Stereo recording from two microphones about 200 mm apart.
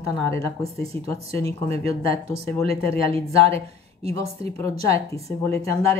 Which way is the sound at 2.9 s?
30° right (ahead or behind).